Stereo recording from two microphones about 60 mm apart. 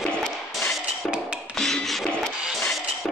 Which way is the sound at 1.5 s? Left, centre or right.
Centre.